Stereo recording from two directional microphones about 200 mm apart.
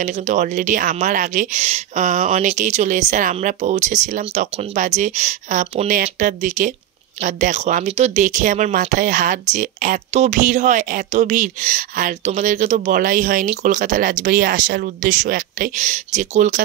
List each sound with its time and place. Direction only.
0.0 s speech: 40° right (ahead or behind)